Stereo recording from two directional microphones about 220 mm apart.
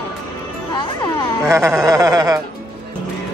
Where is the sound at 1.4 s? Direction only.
15° right (ahead or behind).